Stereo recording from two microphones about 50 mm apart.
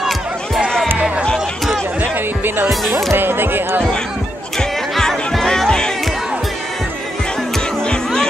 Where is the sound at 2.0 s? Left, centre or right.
Right.